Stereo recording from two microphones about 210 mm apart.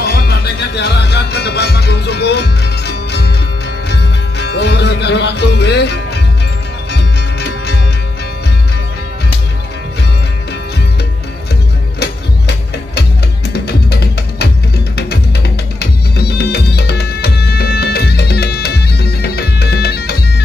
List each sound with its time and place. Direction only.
0.0 s music: 50° left (ahead or behind)
12.0 s music: 50° left (ahead or behind)